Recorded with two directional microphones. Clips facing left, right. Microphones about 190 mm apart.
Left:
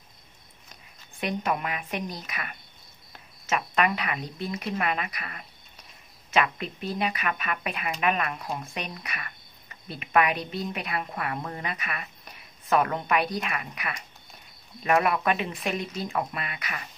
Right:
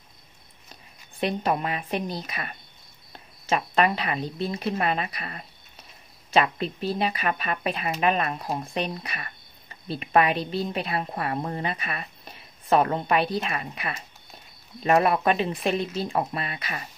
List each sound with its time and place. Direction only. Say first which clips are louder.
1.2 s speech: right 3 dB; 30° right (ahead or behind)